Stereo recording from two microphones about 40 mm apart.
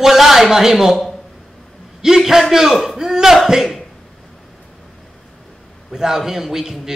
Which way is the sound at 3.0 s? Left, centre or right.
Centre.